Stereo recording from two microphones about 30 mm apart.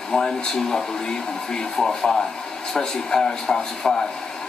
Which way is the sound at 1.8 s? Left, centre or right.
Centre.